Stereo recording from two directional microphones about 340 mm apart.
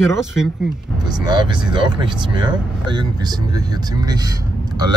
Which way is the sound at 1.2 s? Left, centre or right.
Centre.